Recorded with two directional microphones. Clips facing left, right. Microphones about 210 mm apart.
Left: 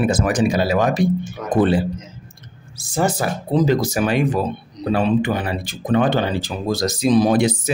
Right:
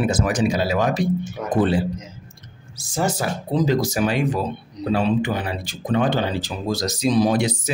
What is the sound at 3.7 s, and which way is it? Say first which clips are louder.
Speech: left 2 dB; 55° left (ahead or behind).